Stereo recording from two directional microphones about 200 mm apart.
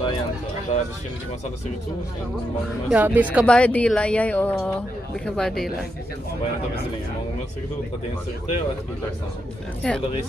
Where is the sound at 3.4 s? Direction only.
5° left (ahead or behind).